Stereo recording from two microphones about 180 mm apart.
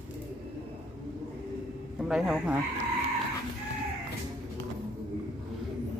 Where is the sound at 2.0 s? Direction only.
5° right (ahead or behind).